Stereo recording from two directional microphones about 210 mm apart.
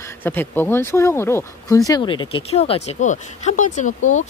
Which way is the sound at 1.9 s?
20° left (ahead or behind).